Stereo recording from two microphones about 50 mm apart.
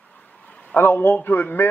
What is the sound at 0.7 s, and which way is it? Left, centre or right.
Speech, left.